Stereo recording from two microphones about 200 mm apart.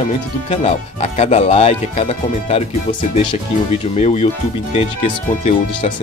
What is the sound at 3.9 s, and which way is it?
Speech, 30° left (ahead or behind).